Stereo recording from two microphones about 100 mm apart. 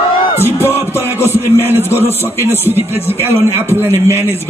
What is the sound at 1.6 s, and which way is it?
Speech, 25° right (ahead or behind).